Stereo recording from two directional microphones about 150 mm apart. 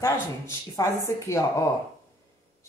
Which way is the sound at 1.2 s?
20° left (ahead or behind).